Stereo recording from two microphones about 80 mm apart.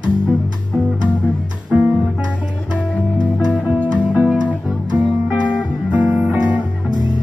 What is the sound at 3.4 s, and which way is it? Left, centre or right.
Music, centre.